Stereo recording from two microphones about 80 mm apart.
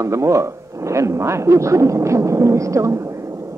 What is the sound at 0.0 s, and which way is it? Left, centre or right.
A woman's voice, right.